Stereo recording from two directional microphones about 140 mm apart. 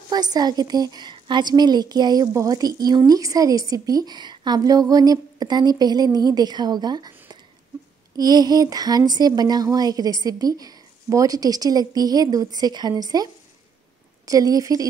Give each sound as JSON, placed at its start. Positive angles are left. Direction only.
{"t": 0.1, "sound": "speech", "side_deg": -30}
{"t": 8.2, "sound": "speech", "side_deg": -30}